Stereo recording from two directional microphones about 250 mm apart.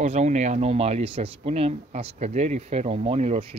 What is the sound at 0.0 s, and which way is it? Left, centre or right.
Speech, right.